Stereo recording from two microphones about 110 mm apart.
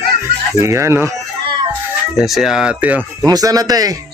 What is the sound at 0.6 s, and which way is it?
Speech, 25° right (ahead or behind).